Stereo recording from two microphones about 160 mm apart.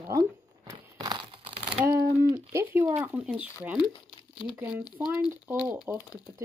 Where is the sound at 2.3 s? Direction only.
15° right (ahead or behind).